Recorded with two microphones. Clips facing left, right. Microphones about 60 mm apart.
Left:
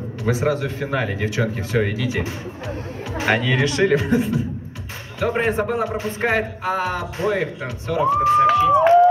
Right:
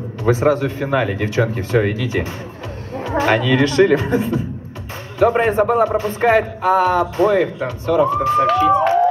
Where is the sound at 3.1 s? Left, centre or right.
Right.